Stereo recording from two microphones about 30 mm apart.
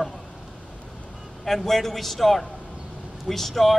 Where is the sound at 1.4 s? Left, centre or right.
Centre.